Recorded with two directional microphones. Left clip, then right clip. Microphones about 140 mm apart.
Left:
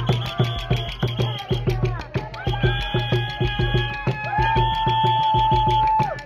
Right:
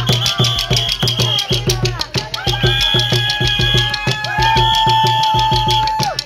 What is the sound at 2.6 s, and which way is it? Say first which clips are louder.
Music: right 11 dB; 45° right (ahead or behind).